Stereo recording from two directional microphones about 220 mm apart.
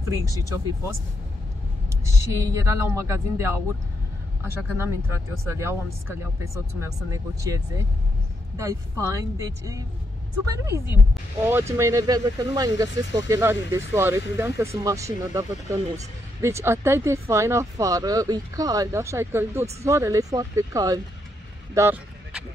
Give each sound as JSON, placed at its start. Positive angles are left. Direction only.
{"t": 0.1, "sound": "speech", "side_deg": -15}
{"t": 2.0, "sound": "speech", "side_deg": -15}
{"t": 9.0, "sound": "speech", "side_deg": -15}